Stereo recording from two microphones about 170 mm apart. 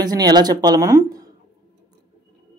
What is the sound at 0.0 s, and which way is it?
Speech, 25° right (ahead or behind).